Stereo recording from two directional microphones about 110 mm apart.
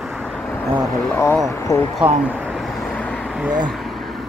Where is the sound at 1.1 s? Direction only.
20° left (ahead or behind).